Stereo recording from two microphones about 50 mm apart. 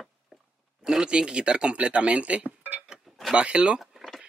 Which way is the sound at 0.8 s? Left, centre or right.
Centre.